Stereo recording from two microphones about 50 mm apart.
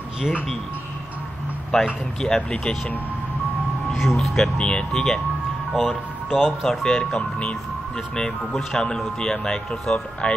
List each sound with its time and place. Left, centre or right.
1.7 s speech: centre
3.9 s speech: centre
4.6 s speech: centre
5.7 s speech: centre
7.2 s speech: left
8.2 s speech: centre